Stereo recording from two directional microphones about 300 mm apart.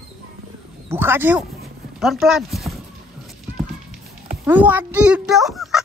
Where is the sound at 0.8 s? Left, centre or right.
Centre.